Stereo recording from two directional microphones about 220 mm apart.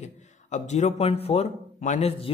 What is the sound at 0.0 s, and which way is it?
A man's voice, 30° left (ahead or behind).